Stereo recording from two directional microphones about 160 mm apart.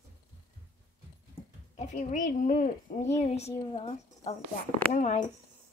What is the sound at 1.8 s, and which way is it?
A woman's voice, 50° left (ahead or behind).